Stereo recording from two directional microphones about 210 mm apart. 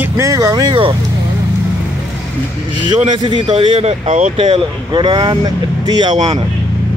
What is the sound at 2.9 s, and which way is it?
Speech, 20° right (ahead or behind).